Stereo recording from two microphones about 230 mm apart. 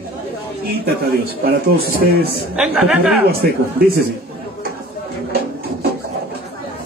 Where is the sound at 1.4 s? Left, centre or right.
Right.